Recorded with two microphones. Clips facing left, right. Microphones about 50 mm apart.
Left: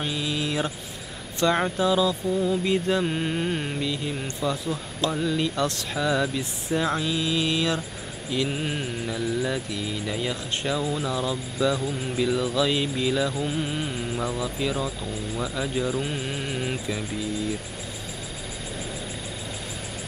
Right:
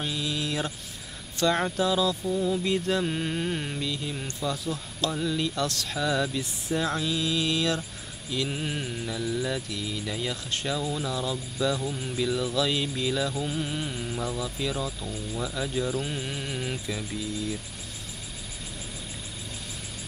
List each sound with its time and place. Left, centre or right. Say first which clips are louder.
0.0 s vehicle: left 3 dB; left
1.4 s mantra: left 2 dB; left